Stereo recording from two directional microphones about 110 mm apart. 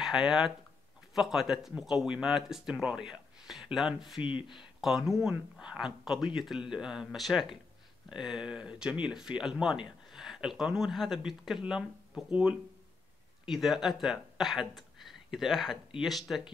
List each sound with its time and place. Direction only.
0.0 s speech: 5° right (ahead or behind)
4.2 s speech: 50° left (ahead or behind)
4.8 s speech: 5° right (ahead or behind)